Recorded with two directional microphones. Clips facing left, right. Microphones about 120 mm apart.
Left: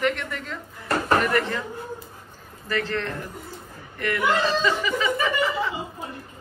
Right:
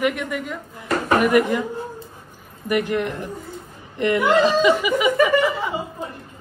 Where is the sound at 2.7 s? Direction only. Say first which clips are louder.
Right 6 dB; 15° right (ahead or behind).